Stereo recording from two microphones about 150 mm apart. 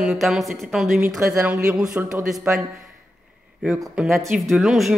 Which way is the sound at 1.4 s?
15° right (ahead or behind).